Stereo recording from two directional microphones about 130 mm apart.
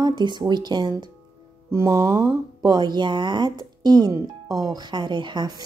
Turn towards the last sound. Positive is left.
turn(degrees=-30)  # may be behind; listen again after turning